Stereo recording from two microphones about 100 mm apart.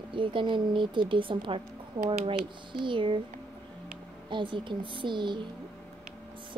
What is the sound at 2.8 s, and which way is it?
Speech, 55° right (ahead or behind).